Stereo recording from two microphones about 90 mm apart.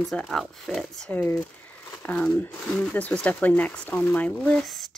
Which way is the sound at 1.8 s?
20° left (ahead or behind).